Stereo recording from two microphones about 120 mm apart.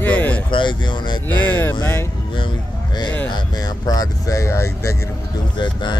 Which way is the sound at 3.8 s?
30° left (ahead or behind).